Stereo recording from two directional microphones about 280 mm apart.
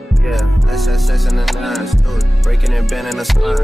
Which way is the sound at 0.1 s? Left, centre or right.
Centre.